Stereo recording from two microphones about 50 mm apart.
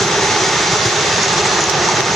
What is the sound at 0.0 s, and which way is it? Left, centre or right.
Vehicle, centre.